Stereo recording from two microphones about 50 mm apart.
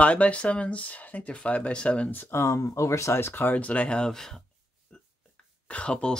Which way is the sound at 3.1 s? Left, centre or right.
Left.